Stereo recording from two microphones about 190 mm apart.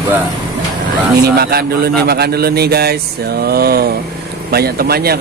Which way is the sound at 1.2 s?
55° right (ahead or behind).